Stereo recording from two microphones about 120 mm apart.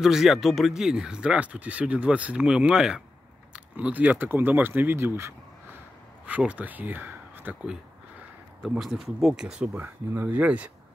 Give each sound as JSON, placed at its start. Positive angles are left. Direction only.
{"t": 0.0, "sound": "speech", "side_deg": -5}
{"t": 8.6, "sound": "speech", "side_deg": 0}